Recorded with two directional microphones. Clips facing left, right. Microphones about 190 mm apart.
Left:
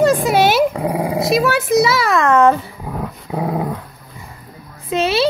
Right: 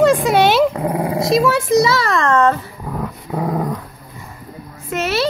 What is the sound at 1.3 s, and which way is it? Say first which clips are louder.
A child's voice: right 1 dB; 5° left (ahead or behind).